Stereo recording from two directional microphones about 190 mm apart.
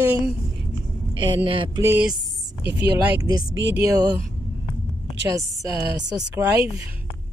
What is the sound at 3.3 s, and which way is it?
Speech, 20° right (ahead or behind).